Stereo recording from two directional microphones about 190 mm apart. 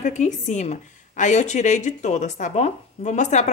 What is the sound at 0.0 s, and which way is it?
A woman's voice, 40° left (ahead or behind).